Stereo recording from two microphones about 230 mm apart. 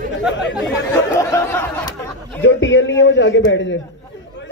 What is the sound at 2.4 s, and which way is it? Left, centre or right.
Speech, left.